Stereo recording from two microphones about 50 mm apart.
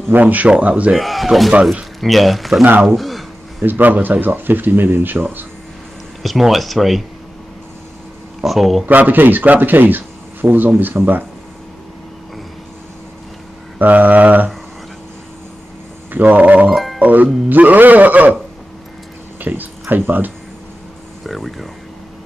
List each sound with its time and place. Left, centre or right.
0.1 s speech: right
0.9 s speech: centre
3.0 s a sound: centre
3.6 s speech: right
6.2 s speech: centre
8.5 s speech: centre
8.8 s speech: right
13.7 s mantra: right
16.1 s speech: right
16.7 s music: centre
17.0 s speech: right
19.4 s speech: right
21.3 s speech: centre